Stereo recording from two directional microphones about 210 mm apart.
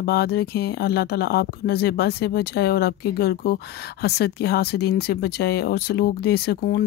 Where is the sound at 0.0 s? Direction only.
50° left (ahead or behind).